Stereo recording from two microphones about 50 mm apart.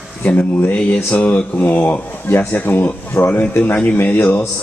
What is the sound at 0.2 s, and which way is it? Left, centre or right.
Speech, left.